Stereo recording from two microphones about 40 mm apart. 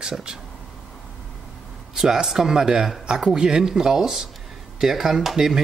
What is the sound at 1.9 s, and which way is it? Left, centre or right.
Speech, centre.